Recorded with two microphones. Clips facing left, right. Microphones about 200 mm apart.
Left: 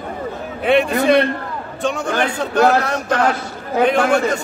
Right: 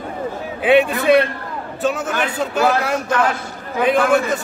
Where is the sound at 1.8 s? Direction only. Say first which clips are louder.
Left 1 dB; 5° right (ahead or behind).